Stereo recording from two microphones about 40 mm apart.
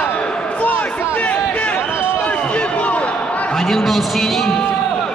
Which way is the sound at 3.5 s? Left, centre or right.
Centre.